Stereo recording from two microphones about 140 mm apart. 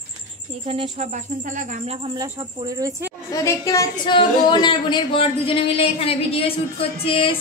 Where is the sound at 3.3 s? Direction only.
25° left (ahead or behind).